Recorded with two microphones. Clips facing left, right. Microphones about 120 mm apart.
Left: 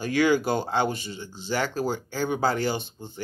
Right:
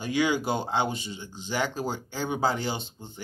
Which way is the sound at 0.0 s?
15° right (ahead or behind).